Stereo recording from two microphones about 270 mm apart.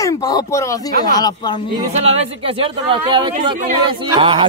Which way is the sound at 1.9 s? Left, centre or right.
Right.